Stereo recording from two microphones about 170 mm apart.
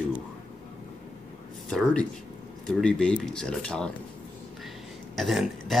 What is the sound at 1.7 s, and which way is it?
Speech, 5° left (ahead or behind).